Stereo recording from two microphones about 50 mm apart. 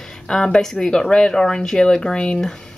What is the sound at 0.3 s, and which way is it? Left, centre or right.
A woman's voice, centre.